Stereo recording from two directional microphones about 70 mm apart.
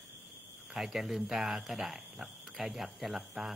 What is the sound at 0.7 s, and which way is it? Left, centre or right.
Speech, centre.